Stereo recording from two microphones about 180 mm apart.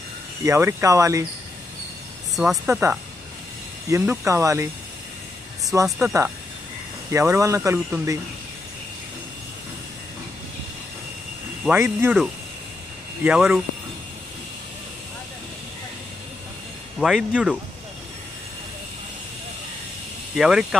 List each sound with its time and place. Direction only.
0.4 s speech: 15° right (ahead or behind)
2.3 s speech: centre (ahead or behind)
5.9 s speech: 5° right (ahead or behind)
7.1 s speech: 15° right (ahead or behind)
11.6 s speech: 5° right (ahead or behind)
17.0 s speech: 5° right (ahead or behind)
20.3 s speech: 5° right (ahead or behind)